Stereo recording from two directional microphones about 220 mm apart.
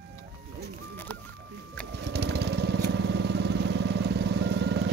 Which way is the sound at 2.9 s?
50° right (ahead or behind).